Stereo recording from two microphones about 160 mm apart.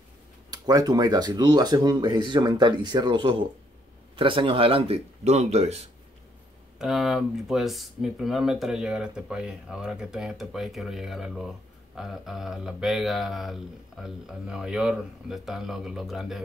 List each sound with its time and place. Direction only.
0.5 s speech: 25° right (ahead or behind); by 5.9 s 40° right (ahead or behind)
6.8 s speech: centre (ahead or behind)